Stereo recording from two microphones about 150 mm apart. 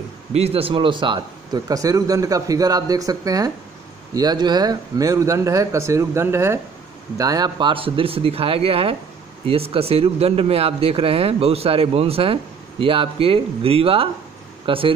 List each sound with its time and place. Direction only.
0.3 s speech: 40° right (ahead or behind)